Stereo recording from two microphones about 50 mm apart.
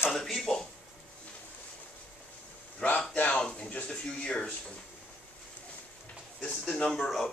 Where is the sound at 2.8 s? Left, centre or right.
Left.